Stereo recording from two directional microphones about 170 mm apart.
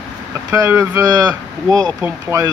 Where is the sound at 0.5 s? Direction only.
15° right (ahead or behind).